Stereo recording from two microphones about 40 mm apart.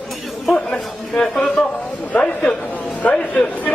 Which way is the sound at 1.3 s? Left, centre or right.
Left.